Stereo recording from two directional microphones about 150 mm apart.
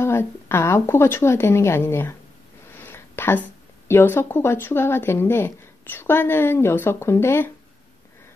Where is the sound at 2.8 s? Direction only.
15° left (ahead or behind).